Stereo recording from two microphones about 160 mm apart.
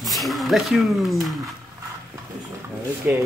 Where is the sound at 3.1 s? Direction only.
10° right (ahead or behind).